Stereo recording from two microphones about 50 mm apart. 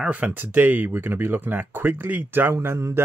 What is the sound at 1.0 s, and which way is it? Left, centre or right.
Speech, right.